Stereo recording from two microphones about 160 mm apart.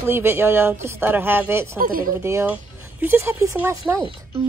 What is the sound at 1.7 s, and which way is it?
Speech, 60° right (ahead or behind).